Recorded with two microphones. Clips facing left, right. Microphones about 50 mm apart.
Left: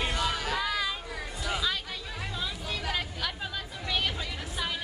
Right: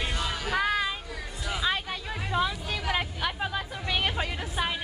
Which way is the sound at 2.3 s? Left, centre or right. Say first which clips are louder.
Right 9 dB; right.